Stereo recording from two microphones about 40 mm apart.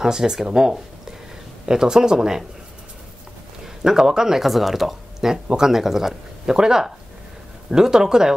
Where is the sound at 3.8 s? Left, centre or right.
Centre.